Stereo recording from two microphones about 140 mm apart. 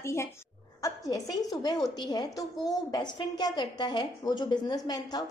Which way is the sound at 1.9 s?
30° left (ahead or behind).